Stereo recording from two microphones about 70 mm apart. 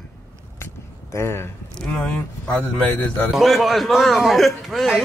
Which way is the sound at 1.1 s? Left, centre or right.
Left.